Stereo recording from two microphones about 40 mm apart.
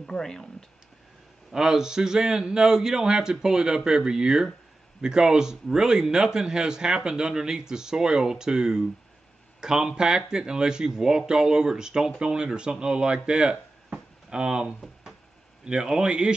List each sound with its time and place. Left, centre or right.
0.0 s speech: centre
1.5 s speech: centre
13.9 s a sound: right
15.6 s speech: right